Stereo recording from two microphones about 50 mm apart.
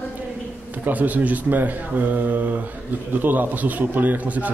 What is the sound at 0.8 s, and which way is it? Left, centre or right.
Speech, right.